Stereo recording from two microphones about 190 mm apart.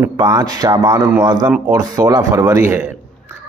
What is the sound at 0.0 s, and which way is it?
A man's voice, 20° right (ahead or behind).